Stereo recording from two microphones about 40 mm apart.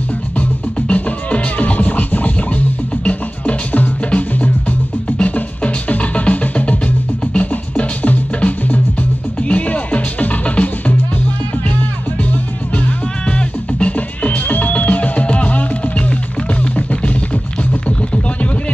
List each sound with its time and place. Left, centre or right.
0.8 s music: left
13.4 s music: left
16.7 s music: left